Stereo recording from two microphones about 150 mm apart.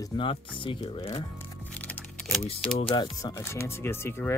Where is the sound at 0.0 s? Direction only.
35° left (ahead or behind).